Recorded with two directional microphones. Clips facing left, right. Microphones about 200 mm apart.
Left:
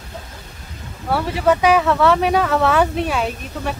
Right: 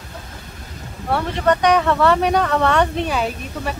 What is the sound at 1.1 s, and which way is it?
Speech, 5° left (ahead or behind).